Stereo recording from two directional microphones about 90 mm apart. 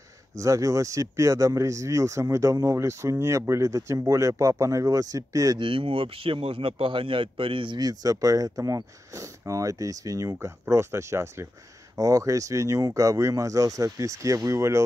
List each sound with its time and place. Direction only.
0.4 s speech: 35° right (ahead or behind)
5.6 s a man's voice: 75° right (ahead or behind)
7.8 s speech: 40° right (ahead or behind)